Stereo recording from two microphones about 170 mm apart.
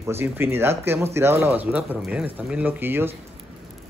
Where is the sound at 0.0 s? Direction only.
15° right (ahead or behind).